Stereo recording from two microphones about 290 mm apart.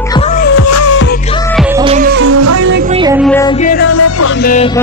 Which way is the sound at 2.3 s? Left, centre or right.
Right.